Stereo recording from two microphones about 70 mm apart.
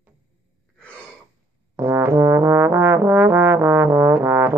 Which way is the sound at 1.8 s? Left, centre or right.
Right.